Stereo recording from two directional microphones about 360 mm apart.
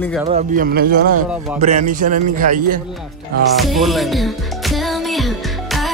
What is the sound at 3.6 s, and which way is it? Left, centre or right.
Music, centre.